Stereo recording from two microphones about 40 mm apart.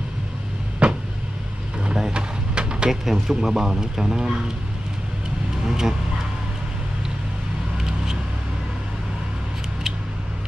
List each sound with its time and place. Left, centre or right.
0.8 s vehicle: right
1.9 s a sound: centre
2.9 s speech: centre
5.7 s vehicle: centre
7.7 s vehicle: centre